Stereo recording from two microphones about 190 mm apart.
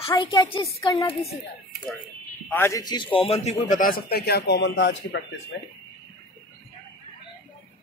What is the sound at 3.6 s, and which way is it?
A man's voice, 45° left (ahead or behind).